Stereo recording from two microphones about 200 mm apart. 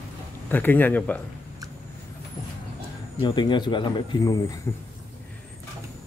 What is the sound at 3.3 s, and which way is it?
Speech, 25° left (ahead or behind).